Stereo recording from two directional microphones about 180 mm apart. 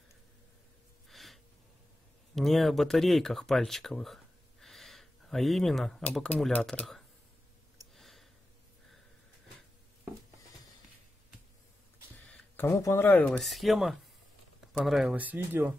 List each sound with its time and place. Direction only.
1.0 s gasp: centre (ahead or behind)
2.3 s speech: centre (ahead or behind)
7.9 s a sound: centre (ahead or behind)
12.5 s speech: 15° left (ahead or behind); by 15.7 s 10° right (ahead or behind)